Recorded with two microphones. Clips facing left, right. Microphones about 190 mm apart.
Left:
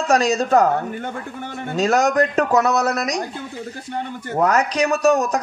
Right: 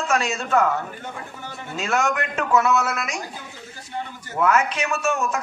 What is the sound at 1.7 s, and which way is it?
A man's voice, 35° left (ahead or behind).